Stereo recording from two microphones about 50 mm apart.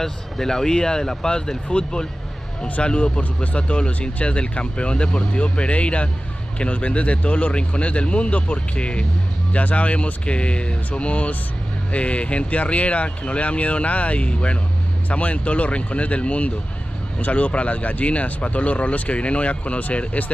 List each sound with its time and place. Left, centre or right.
0.0 s speech: centre; by 20.2 s left